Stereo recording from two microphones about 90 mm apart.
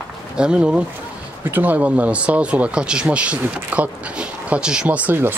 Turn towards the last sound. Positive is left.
turn(degrees=-20)  # may be behind; listen again after turning